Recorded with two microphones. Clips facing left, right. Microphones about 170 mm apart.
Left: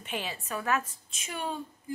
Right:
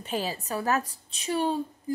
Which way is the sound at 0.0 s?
35° right (ahead or behind).